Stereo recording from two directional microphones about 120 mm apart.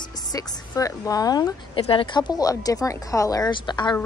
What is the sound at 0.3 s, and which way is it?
Speech, 30° left (ahead or behind).